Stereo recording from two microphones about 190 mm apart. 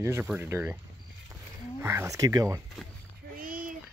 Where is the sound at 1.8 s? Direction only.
15° right (ahead or behind).